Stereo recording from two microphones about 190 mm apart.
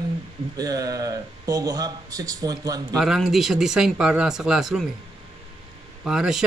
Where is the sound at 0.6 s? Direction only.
20° right (ahead or behind).